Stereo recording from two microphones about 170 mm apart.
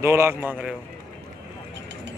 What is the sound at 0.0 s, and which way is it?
Speech, 15° right (ahead or behind).